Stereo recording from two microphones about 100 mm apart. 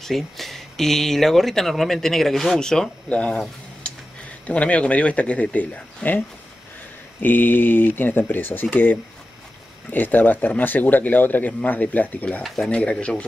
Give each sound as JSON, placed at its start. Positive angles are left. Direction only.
{"t": 0.0, "sound": "speech", "side_deg": 0}
{"t": 4.5, "sound": "speech", "side_deg": 15}